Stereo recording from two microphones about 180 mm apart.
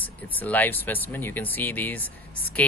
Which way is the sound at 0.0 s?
10° left (ahead or behind).